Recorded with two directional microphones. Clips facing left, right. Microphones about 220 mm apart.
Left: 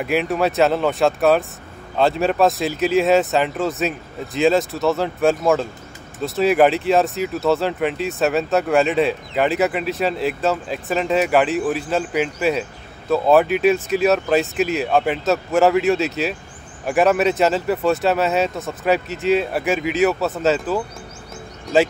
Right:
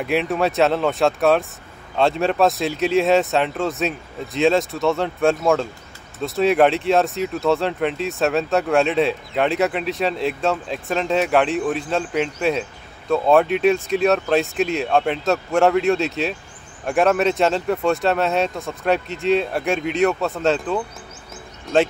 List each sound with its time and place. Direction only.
0.0 s speech: centre (ahead or behind)